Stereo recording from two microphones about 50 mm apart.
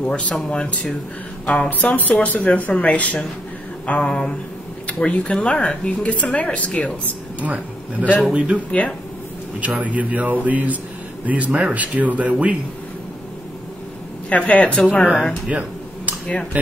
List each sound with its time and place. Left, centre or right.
0.0 s speech: left
7.3 s speech: right
8.3 s speech: right
9.6 s speech: right
14.3 s speech: left
15.5 s speech: right